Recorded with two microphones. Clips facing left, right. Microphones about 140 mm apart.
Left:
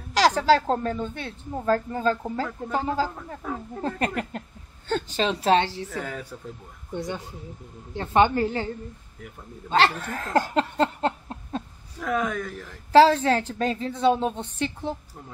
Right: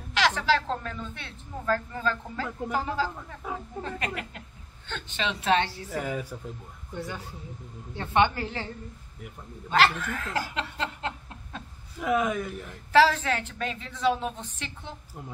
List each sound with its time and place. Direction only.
0.1 s a woman's voice: 40° left (ahead or behind)
5.7 s speech: 10° right (ahead or behind)
6.9 s speech: 15° left (ahead or behind)
7.9 s a woman's voice: 35° left (ahead or behind)
9.7 s a woman's voice: 35° left (ahead or behind)
10.3 s a sound: 40° left (ahead or behind)
12.0 s speech: 5° right (ahead or behind)
12.9 s a woman's voice: 30° left (ahead or behind)